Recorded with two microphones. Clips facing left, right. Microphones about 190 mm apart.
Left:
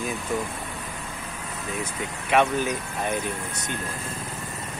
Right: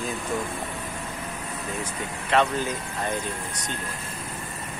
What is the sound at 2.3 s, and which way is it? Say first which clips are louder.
Speech: left 1 dB; 15° left (ahead or behind).